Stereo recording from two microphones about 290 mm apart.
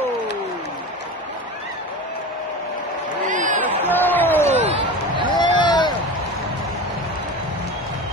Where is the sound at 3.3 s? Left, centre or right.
Right.